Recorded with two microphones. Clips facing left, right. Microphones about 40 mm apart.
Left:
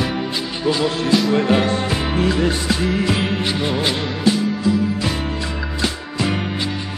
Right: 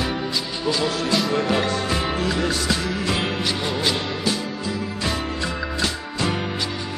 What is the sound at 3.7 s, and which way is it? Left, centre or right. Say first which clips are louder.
Music: left 3 dB; left.